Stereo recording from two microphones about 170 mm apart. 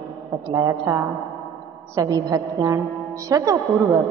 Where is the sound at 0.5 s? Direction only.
20° right (ahead or behind).